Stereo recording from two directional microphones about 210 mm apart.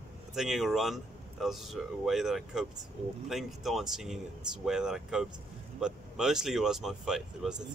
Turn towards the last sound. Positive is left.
turn(degrees=-5)  # may be behind; listen again after turning